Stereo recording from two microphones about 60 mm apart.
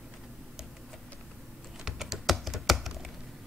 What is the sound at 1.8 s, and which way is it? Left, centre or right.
Computer keyboard, centre.